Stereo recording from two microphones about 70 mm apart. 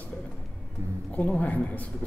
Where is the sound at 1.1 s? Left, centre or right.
Left.